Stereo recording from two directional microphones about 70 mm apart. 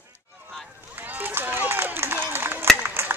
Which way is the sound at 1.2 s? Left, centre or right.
Right.